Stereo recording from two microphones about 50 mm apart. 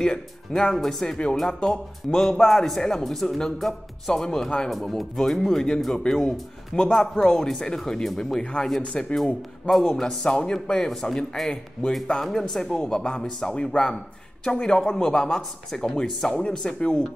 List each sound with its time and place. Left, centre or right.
0.0 s a man's voice: centre
8.9 s a man's voice: centre